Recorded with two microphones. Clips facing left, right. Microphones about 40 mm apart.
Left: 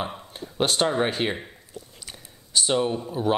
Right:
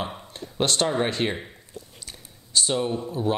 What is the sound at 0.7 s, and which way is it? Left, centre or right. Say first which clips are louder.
Speech: left 1 dB; left.